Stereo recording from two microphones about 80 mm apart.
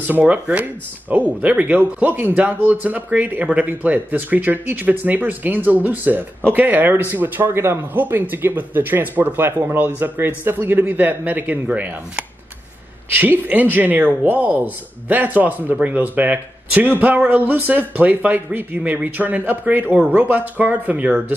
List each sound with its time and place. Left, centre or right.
0.0 s speech: right